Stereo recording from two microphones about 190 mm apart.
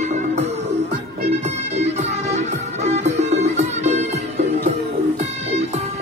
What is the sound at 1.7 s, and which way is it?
Music, 35° right (ahead or behind).